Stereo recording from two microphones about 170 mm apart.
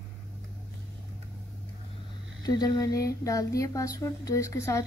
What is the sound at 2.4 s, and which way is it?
Speech, 25° left (ahead or behind).